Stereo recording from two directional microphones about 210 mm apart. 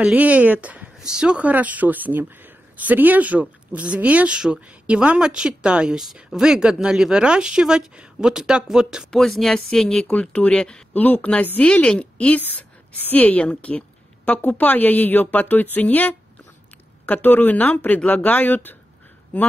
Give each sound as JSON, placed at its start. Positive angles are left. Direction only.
{"t": 0.0, "sound": "a woman's voice", "side_deg": -5}